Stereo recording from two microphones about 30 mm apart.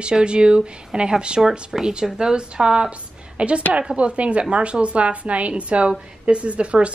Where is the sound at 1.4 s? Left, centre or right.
Centre.